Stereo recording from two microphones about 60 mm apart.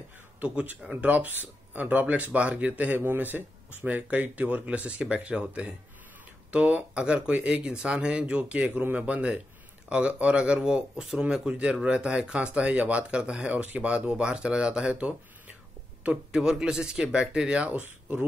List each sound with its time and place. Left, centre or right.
0.4 s a man's voice: right
3.0 s speech: right
16.3 s speech: centre